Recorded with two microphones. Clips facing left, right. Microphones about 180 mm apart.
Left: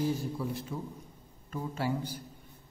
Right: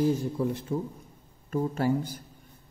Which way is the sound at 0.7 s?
40° right (ahead or behind).